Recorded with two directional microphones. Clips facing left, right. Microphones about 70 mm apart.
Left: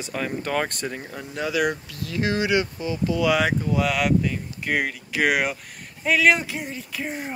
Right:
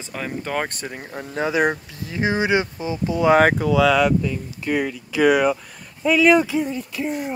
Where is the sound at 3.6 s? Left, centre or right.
Right.